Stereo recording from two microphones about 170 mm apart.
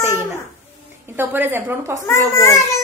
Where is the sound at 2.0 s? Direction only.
15° left (ahead or behind).